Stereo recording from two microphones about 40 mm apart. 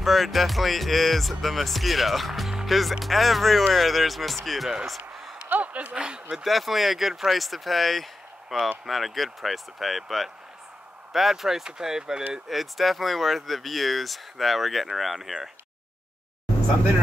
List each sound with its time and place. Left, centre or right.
0.0 s speech: centre
4.8 s basketball bounce: centre
5.5 s a sound: right
5.9 s speech: right
6.3 s speech: centre
12.4 s speech: centre